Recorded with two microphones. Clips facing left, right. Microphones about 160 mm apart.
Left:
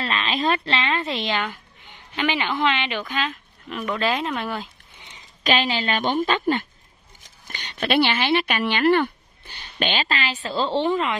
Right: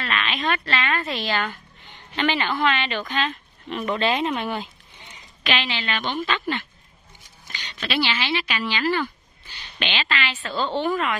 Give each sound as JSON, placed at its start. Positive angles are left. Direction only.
{"t": 0.0, "sound": "a woman's voice", "side_deg": 30}
{"t": 5.4, "sound": "a woman's voice", "side_deg": 40}
{"t": 7.4, "sound": "speech", "side_deg": 55}